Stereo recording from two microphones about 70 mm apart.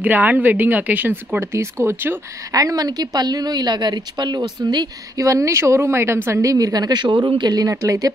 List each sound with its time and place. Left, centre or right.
0.0 s a woman's voice: right
2.5 s a woman's voice: right
5.2 s speech: right
6.4 s a woman's voice: right
7.2 s a woman's voice: right
7.8 s speech: right